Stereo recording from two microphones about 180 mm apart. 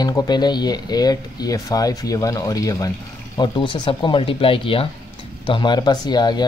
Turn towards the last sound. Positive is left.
turn(degrees=25)  # may be behind; listen again after turning